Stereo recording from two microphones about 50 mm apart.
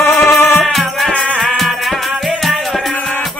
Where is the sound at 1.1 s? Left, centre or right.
Left.